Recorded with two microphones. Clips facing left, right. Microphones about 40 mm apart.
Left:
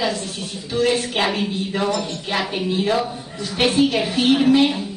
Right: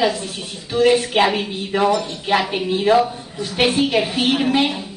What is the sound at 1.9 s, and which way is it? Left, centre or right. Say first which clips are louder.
A woman's voice: right 4 dB; centre.